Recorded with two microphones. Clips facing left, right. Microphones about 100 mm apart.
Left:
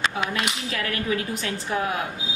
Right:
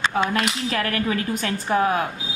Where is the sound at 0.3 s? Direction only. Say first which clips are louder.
Right 4 dB; 45° right (ahead or behind).